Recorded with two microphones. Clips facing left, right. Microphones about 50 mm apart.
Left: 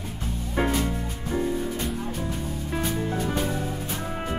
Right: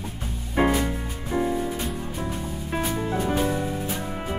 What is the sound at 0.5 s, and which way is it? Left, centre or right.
Music, centre.